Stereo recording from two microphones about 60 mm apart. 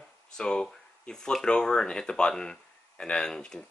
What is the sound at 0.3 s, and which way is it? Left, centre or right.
Speech, centre.